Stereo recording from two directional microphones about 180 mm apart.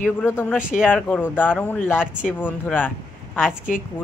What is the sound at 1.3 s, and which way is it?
Speech, 10° left (ahead or behind).